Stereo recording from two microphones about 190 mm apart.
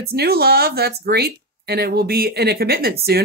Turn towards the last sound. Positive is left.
turn(degrees=-55)  # may be behind; listen again after turning